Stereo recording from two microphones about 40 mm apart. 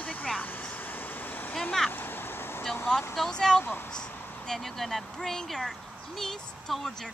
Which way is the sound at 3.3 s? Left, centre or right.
Centre.